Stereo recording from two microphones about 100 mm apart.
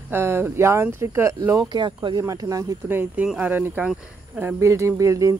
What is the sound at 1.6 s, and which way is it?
Speech, 50° right (ahead or behind).